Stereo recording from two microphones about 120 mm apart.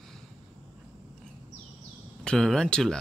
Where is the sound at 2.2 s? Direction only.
5° left (ahead or behind).